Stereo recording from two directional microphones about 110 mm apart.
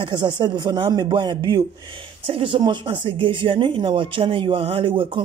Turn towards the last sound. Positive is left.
turn(degrees=-50)  # may be behind; listen again after turning